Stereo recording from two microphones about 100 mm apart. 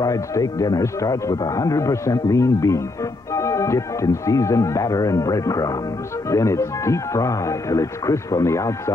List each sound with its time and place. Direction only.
0.0 s speech: 35° left (ahead or behind)